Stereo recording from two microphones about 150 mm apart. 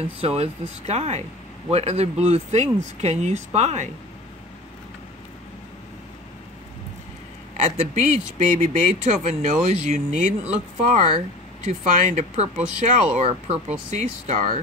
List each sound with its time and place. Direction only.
0.0 s speech: 45° right (ahead or behind)
7.7 s speech: 50° right (ahead or behind)